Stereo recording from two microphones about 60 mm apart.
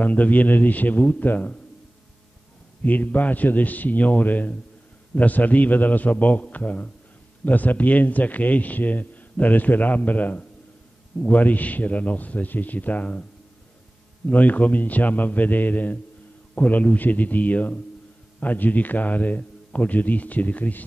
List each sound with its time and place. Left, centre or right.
0.0 s a man's voice: left
2.8 s a man's voice: left
14.2 s a man's voice: left